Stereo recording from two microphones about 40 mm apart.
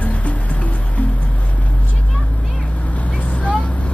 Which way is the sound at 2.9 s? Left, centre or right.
Left.